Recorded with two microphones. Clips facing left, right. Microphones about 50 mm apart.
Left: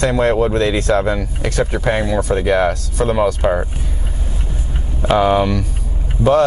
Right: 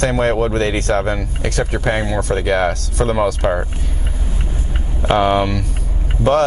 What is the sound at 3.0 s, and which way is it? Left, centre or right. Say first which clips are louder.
Speech: left 1 dB; centre.